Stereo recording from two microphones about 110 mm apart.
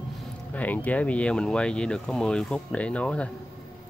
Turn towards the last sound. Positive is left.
turn(degrees=10)  # may be behind; listen again after turning